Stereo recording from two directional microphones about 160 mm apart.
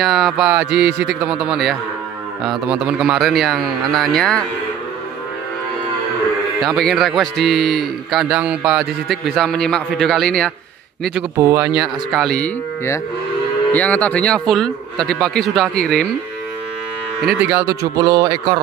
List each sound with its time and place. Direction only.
0.0 s a man's voice: centre (ahead or behind)
6.6 s a man's voice: 5° left (ahead or behind)
11.3 s speech: 20° right (ahead or behind)
11.7 s a man's voice: centre (ahead or behind)
13.7 s a man's voice: 10° left (ahead or behind)
17.3 s speech: 10° right (ahead or behind); by 18.6 s 25° right (ahead or behind)